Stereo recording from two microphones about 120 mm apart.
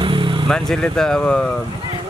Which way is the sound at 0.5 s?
5° left (ahead or behind).